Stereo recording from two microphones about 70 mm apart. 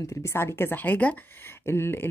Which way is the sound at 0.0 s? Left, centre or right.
Left.